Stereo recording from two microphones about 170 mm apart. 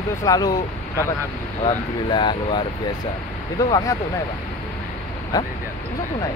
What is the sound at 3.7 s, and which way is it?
Speech, 20° left (ahead or behind).